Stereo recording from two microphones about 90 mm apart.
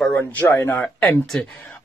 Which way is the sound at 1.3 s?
10° left (ahead or behind).